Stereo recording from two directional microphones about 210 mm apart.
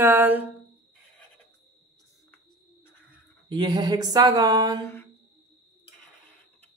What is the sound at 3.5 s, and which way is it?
Speech, 20° right (ahead or behind).